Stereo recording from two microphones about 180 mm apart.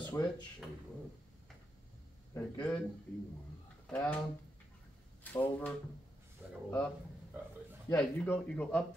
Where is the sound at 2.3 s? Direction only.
5° left (ahead or behind).